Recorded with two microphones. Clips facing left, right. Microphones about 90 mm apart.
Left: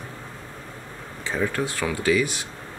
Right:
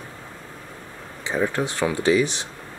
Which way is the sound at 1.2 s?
20° right (ahead or behind).